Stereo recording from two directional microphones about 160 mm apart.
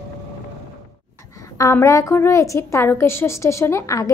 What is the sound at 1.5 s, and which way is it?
A woman's voice, 20° left (ahead or behind).